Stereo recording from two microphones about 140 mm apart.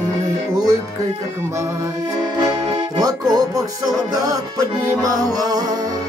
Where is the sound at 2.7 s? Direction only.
25° right (ahead or behind).